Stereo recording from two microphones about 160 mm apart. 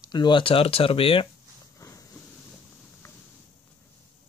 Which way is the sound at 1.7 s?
20° left (ahead or behind).